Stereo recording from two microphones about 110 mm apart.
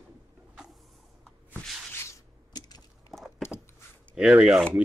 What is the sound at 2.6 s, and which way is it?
Crack, 40° left (ahead or behind).